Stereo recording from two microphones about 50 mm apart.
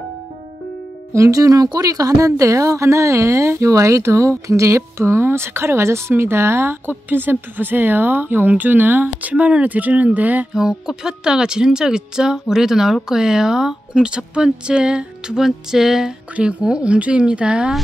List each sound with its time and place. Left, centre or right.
1.1 s speech: right
9.3 s speech: right
10.5 s speech: centre
16.3 s speech: right